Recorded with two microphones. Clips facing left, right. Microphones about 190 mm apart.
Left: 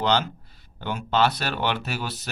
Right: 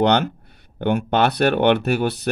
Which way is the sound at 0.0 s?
60° right (ahead or behind).